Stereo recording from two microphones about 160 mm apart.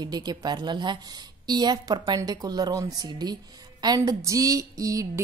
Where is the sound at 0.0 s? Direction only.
25° right (ahead or behind).